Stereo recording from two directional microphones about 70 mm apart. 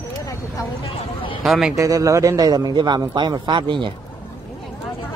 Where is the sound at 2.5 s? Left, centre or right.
Right.